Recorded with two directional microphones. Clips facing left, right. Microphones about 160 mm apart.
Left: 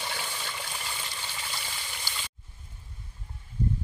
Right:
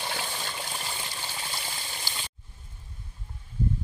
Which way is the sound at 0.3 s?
30° right (ahead or behind).